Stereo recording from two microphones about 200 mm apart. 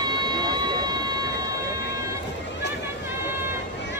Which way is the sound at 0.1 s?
20° right (ahead or behind).